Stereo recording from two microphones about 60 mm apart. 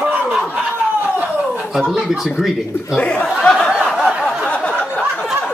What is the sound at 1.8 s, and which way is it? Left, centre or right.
Speech, centre.